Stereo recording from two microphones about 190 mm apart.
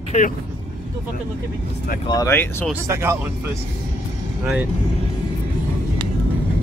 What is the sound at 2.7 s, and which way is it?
Speech, 15° right (ahead or behind).